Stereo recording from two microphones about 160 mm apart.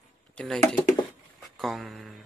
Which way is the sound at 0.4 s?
5° left (ahead or behind).